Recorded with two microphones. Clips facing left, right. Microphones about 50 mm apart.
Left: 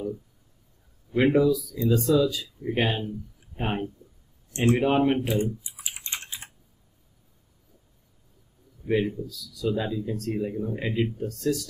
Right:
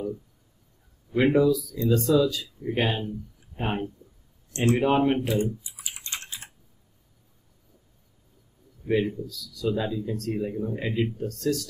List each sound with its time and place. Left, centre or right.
1.1 s speech: centre
4.5 s speech: centre
4.7 s speech: centre
5.3 s speech: centre
5.8 s typing: centre
8.8 s speech: centre